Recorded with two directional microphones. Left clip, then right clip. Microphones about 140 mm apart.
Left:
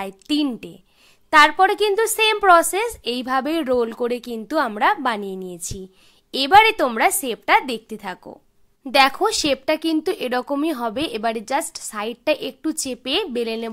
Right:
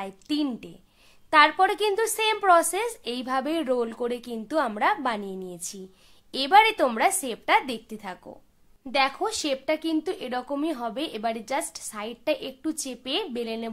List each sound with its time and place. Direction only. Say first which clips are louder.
0.0 s a woman's voice: left 6 dB; 35° left (ahead or behind)
8.8 s a woman's voice: left 8 dB; 45° left (ahead or behind)